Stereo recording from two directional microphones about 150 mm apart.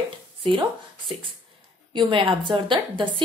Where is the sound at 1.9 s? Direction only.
30° right (ahead or behind).